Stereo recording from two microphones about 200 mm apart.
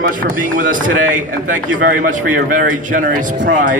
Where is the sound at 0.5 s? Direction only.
45° right (ahead or behind).